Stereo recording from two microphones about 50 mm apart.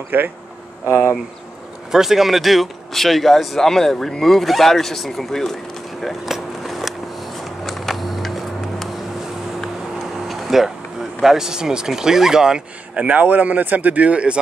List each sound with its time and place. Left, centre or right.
0.1 s speech: right
1.9 s speech: centre
6.0 s a sound: centre
10.2 s a sound: centre
11.2 s speech: centre
12.9 s speech: right